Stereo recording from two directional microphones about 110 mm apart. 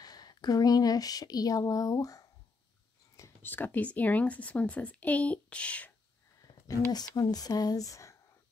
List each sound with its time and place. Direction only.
0.0 s speech: 35° left (ahead or behind)
3.4 s speech: 15° left (ahead or behind)
6.9 s speech: 35° left (ahead or behind)